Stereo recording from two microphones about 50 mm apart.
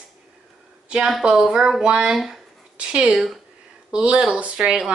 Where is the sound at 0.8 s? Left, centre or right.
Centre.